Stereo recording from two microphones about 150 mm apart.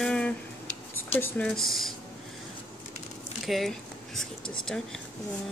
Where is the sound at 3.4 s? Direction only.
Centre (ahead or behind).